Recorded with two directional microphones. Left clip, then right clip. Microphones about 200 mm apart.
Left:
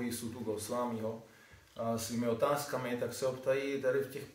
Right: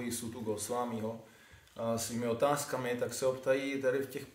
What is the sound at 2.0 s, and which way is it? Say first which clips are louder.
A man's voice: even; 65° right (ahead or behind).